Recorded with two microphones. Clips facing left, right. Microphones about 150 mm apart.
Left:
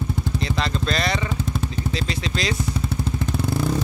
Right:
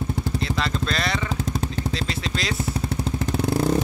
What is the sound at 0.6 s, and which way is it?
Speech, centre (ahead or behind).